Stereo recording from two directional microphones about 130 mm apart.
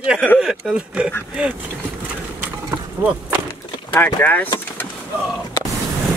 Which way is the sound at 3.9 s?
15° left (ahead or behind).